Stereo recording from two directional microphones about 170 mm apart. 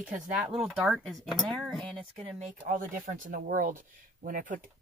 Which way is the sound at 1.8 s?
35° right (ahead or behind).